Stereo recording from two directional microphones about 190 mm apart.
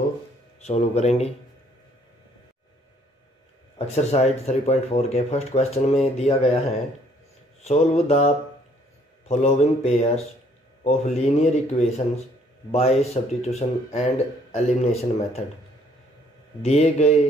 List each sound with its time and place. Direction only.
0.7 s speech: 35° left (ahead or behind)
3.7 s speech: 35° left (ahead or behind)
7.6 s speech: 35° left (ahead or behind)
9.3 s speech: 35° left (ahead or behind)
16.6 s speech: 35° left (ahead or behind)